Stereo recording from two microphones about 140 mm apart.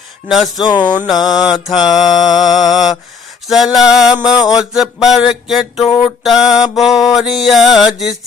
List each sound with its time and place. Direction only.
0.3 s mantra: centre (ahead or behind)
0.7 s music: 30° left (ahead or behind)
1.0 s mantra: 5° right (ahead or behind)